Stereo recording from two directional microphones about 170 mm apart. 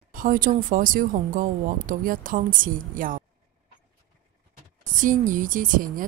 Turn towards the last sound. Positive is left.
turn(degrees=-55)  # may be behind; listen again after turning